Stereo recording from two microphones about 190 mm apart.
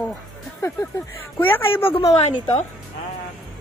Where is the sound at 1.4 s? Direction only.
10° left (ahead or behind).